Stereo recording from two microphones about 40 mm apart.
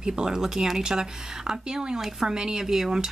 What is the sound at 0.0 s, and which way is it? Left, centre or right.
Speech, centre.